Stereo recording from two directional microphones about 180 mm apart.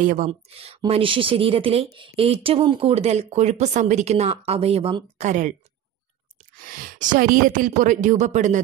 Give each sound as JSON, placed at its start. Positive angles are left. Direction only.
{"t": 0.0, "sound": "a woman's voice", "side_deg": -50}
{"t": 0.3, "sound": "speech", "side_deg": -35}
{"t": 6.5, "sound": "a woman's voice", "side_deg": -50}